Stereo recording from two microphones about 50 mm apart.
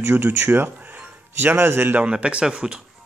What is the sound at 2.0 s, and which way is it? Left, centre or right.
Speech, centre.